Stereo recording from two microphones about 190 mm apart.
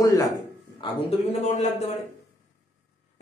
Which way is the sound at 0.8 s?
35° left (ahead or behind).